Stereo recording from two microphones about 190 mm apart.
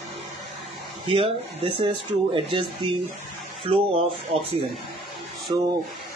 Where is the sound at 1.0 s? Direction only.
30° right (ahead or behind).